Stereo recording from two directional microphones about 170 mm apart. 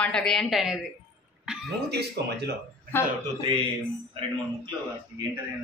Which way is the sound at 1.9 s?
75° right (ahead or behind).